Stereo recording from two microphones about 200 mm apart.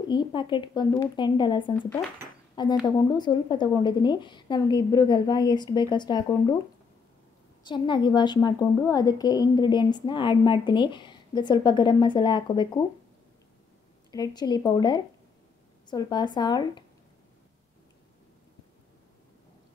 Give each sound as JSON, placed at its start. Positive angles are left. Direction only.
{"t": 0.1, "sound": "a woman's voice", "side_deg": 25}
{"t": 1.8, "sound": "speech", "side_deg": 5}
{"t": 2.5, "sound": "a woman's voice", "side_deg": 20}
{"t": 7.6, "sound": "a woman's voice", "side_deg": 25}
{"t": 14.1, "sound": "a woman's voice", "side_deg": 20}